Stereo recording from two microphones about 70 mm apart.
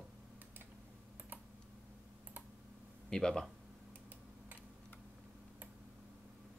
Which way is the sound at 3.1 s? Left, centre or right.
Centre.